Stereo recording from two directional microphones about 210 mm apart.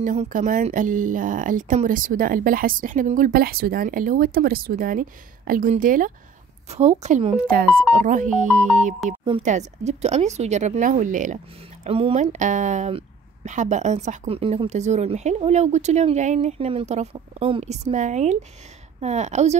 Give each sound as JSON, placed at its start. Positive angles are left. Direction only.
{"t": 0.0, "sound": "a woman's voice", "side_deg": -35}